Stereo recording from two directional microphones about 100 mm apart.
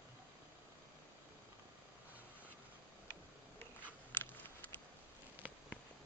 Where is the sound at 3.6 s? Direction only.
15° left (ahead or behind).